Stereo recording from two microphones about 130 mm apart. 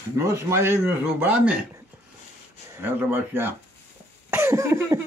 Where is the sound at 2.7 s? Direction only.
15° right (ahead or behind).